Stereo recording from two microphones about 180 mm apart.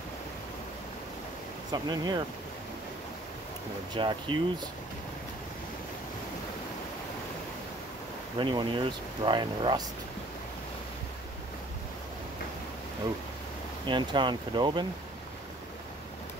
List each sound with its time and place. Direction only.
1.7 s speech: 25° right (ahead or behind)
3.9 s speech: 25° right (ahead or behind)
8.4 s speech: 25° right (ahead or behind)
13.8 s speech: 25° right (ahead or behind)